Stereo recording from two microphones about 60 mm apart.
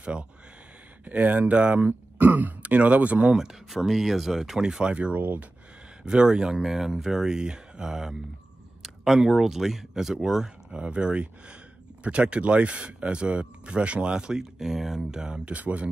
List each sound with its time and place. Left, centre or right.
0.0 s speech: centre
1.9 s speech: right
3.3 s speech: centre; by 5.5 s right
6.0 s speech: centre
15.5 s speech: right